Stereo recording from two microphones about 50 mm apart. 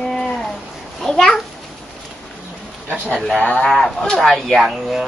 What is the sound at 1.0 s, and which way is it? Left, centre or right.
Speech, centre.